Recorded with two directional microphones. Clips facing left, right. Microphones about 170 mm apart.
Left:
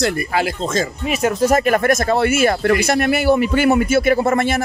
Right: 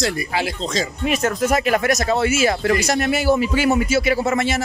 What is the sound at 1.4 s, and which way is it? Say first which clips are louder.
Speech: left 4 dB; 45° left (ahead or behind).